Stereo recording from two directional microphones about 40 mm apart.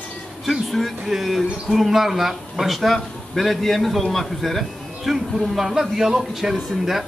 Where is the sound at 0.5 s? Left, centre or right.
Centre.